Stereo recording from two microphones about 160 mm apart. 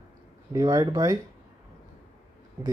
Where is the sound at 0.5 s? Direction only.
20° right (ahead or behind).